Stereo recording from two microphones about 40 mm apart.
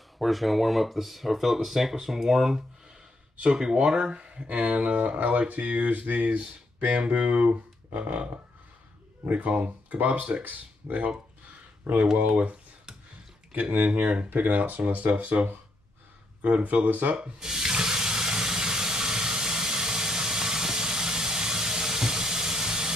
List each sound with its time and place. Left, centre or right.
0.2 s speech: centre; by 11.1 s right
13.5 s speech: right
14.3 s speech: right
16.6 s speech: right
17.2 s sink: centre